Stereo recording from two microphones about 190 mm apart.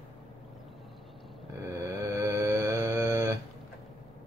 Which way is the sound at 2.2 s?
15° right (ahead or behind).